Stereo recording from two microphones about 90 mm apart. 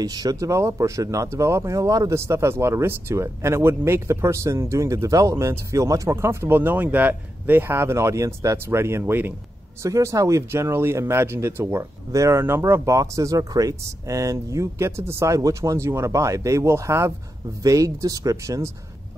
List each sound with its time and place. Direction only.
0.0 s speech: 45° right (ahead or behind); by 9.3 s 25° right (ahead or behind)
9.8 s speech: 40° right (ahead or behind)